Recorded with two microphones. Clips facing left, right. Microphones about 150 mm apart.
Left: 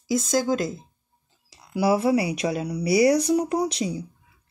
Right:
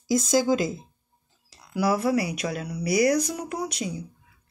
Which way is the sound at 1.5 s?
10° left (ahead or behind).